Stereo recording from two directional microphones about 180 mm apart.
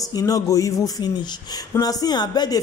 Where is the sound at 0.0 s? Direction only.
20° left (ahead or behind).